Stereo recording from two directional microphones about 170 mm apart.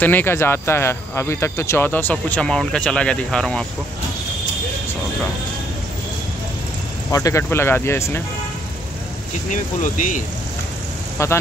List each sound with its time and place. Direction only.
0.0 s speech: 10° left (ahead or behind)
7.1 s speech: 20° left (ahead or behind)
9.5 s speech: 50° left (ahead or behind)
11.2 s speech: 15° left (ahead or behind)